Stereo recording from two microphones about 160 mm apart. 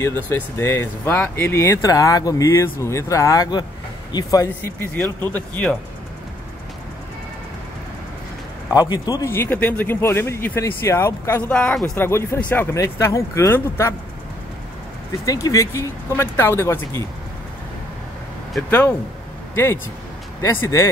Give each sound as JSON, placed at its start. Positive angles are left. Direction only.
{"t": 0.0, "sound": "speech", "side_deg": 15}
{"t": 5.3, "sound": "speech", "side_deg": 5}
{"t": 8.7, "sound": "speech", "side_deg": 25}
{"t": 15.2, "sound": "speech", "side_deg": 20}
{"t": 18.7, "sound": "speech", "side_deg": 15}